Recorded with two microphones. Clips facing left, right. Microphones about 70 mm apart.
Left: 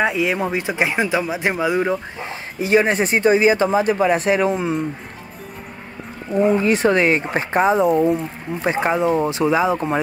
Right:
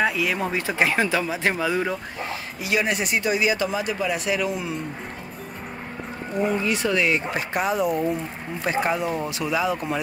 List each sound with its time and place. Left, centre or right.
0.0 s speech: left
6.4 s speech: left